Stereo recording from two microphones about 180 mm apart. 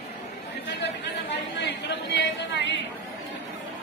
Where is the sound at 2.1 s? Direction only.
80° left.